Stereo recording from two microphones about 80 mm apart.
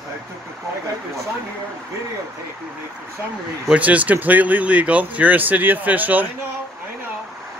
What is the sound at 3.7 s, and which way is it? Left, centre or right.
Speech, centre.